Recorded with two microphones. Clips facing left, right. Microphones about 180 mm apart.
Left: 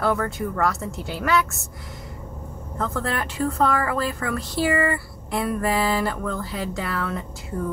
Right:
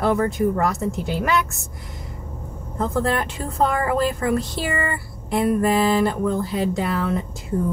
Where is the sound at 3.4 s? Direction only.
15° right (ahead or behind).